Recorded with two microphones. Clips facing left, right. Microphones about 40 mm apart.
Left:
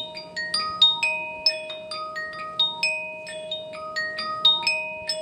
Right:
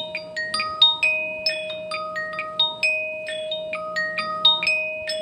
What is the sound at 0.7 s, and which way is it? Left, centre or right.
Music, centre.